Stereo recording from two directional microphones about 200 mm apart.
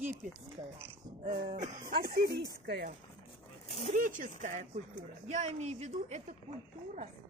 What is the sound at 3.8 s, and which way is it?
Speech, 40° right (ahead or behind).